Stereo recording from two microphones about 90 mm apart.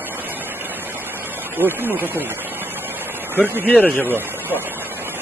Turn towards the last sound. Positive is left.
turn(degrees=-25)  # may be behind; listen again after turning